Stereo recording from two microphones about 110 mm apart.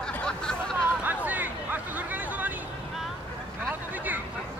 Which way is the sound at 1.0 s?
15° right (ahead or behind).